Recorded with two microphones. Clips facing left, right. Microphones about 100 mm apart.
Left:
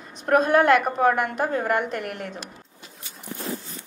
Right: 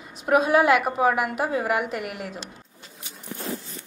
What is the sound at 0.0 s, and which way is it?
A woman's voice, 5° right (ahead or behind).